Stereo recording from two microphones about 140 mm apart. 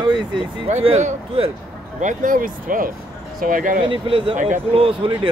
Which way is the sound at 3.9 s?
40° right (ahead or behind).